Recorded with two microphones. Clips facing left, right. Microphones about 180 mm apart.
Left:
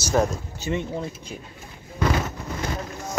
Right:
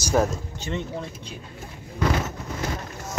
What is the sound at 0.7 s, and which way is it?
Speech, 10° left (ahead or behind).